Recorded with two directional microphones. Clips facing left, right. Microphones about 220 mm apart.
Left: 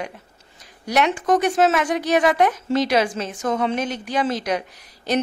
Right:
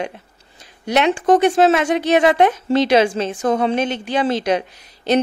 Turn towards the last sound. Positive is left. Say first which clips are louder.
# right 5 dB
turn(degrees=-25)  # may be behind; listen again after turning